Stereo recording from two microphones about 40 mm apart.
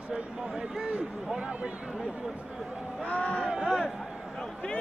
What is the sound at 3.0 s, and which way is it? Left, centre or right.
Speech, left.